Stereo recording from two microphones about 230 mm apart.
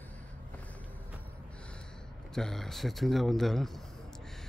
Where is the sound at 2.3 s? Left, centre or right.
Centre.